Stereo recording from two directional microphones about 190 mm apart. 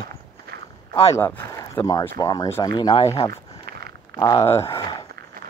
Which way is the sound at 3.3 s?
55° right (ahead or behind).